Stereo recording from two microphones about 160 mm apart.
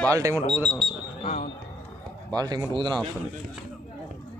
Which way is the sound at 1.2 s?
45° left (ahead or behind).